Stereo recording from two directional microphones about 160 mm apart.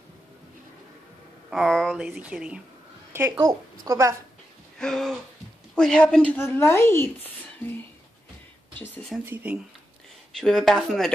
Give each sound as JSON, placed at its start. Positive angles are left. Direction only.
{"t": 1.5, "sound": "a woman's voice", "side_deg": 5}
{"t": 4.7, "sound": "speech", "side_deg": 5}
{"t": 9.2, "sound": "speech", "side_deg": -10}
{"t": 10.4, "sound": "speech", "side_deg": 0}